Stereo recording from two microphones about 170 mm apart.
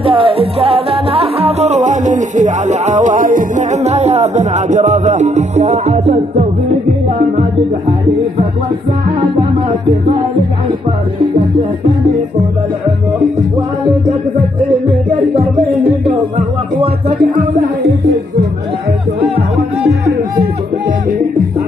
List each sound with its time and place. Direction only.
0.0 s music: 30° right (ahead or behind)
9.4 s music: 30° right (ahead or behind)
16.3 s music: 60° right (ahead or behind)